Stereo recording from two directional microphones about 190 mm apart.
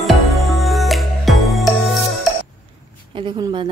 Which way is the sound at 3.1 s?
25° right (ahead or behind).